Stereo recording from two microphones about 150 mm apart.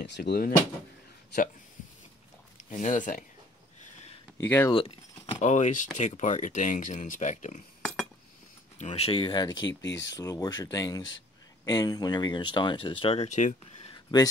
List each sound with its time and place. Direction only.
0.2 s speech: 90° left
2.7 s speech: 55° left (ahead or behind)
4.4 s speech: 15° left (ahead or behind)
4.6 s speech: 35° left (ahead or behind)
5.4 s speech: 50° left (ahead or behind)
7.8 s cutlery: centre (ahead or behind)
8.7 s speech: 45° left (ahead or behind)
13.9 s a sound: 25° left (ahead or behind)